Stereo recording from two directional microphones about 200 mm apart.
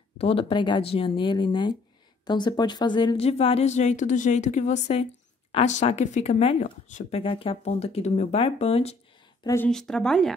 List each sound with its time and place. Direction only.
0.2 s speech: 30° left (ahead or behind)
9.4 s a woman's voice: 15° left (ahead or behind)
9.7 s speech: 5° left (ahead or behind)